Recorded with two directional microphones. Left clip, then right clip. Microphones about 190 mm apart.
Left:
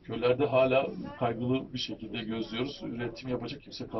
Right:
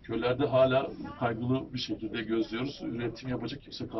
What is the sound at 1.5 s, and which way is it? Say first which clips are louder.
Speech: even; 15° left (ahead or behind).